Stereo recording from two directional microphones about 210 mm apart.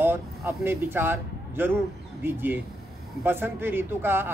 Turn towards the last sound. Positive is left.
turn(degrees=-10)  # may be behind; listen again after turning